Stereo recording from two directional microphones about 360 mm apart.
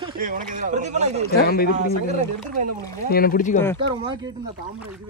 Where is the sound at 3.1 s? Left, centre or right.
Left.